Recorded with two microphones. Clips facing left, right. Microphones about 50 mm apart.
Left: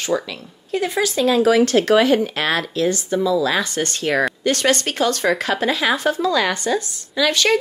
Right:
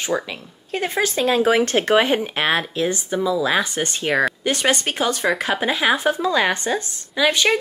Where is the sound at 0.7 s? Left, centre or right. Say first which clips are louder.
Left 2 dB; right.